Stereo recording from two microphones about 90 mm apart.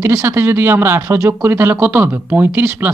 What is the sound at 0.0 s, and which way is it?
Speech, 30° right (ahead or behind).